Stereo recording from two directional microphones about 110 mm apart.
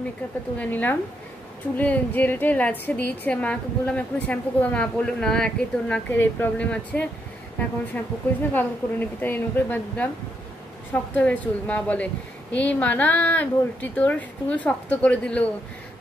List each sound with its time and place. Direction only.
0.6 s a woman's voice: 15° left (ahead or behind)